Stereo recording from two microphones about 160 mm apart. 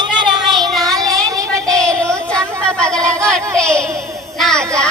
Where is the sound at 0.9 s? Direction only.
20° right (ahead or behind).